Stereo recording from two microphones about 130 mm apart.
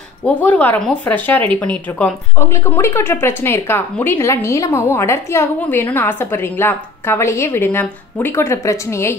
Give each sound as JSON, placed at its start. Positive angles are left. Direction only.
{"t": 0.2, "sound": "speech", "side_deg": 15}